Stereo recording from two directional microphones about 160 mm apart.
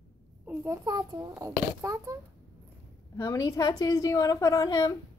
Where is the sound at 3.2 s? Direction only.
20° left (ahead or behind).